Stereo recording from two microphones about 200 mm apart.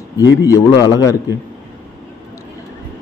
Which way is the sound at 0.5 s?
15° left (ahead or behind).